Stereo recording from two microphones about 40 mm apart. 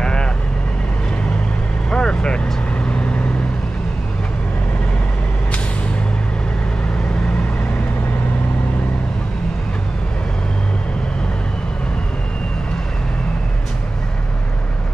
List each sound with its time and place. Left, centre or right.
0.0 s vehicle: left
1.9 s vehicle: left